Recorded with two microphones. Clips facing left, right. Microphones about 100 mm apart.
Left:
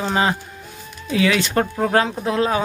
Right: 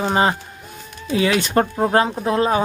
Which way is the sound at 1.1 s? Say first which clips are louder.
Right 1 dB; 40° right (ahead or behind).